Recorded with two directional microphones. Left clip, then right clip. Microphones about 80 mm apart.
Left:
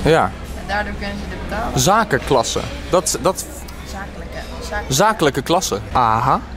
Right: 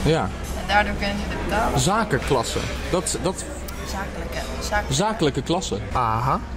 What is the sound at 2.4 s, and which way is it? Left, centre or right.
Speech, right.